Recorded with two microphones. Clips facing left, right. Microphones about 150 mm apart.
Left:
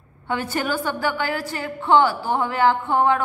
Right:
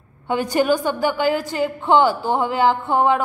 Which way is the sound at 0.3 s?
15° right (ahead or behind).